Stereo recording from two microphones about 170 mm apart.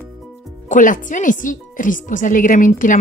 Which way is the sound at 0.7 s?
50° left (ahead or behind).